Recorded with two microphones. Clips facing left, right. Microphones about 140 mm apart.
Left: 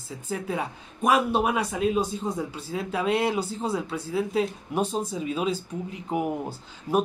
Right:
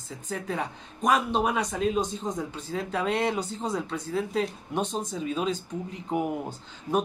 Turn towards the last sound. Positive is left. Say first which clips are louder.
# left 2 dB
turn(degrees=5)  # may be behind; listen again after turning